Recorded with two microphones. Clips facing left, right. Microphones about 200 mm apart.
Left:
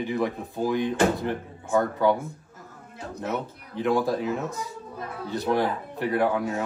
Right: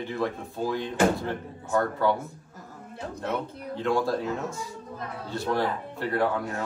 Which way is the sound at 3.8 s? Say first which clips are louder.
Left 2 dB; 20° left (ahead or behind).